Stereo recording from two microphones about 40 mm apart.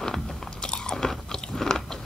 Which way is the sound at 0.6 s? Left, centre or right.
Left.